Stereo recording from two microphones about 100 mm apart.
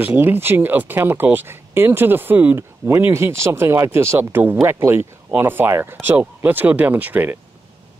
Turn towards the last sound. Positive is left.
turn(degrees=-15)  # may be behind; listen again after turning